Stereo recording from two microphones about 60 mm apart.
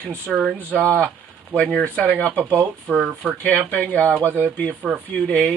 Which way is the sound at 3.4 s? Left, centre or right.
Left.